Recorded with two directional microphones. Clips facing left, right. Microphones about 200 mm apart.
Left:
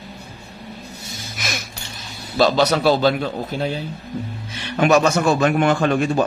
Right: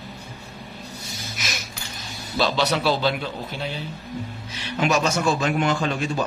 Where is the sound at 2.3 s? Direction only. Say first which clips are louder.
Left 6 dB; 45° left (ahead or behind).